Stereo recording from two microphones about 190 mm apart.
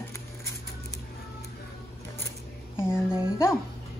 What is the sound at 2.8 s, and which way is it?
Speech, 10° left (ahead or behind).